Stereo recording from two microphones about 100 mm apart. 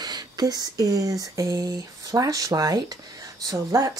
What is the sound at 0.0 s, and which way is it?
Speech, 40° right (ahead or behind).